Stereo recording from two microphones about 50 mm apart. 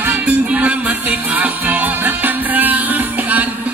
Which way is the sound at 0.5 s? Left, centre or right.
Right.